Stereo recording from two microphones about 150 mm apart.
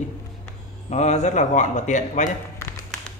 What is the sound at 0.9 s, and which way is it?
Speech, 50° left (ahead or behind).